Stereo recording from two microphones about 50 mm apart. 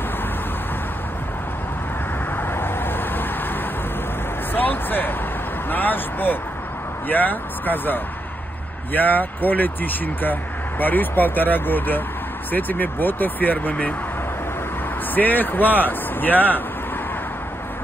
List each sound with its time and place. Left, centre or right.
2.3 s vehicle: left
4.6 s vehicle: left
7.1 s speech: left
15.1 s speech: left